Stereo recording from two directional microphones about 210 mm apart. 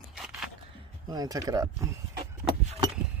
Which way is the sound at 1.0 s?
20° right (ahead or behind).